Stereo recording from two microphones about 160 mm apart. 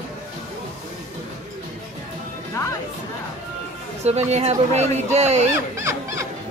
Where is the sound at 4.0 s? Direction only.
40° right (ahead or behind).